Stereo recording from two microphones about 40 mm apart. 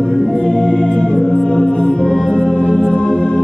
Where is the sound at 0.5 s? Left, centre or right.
Left.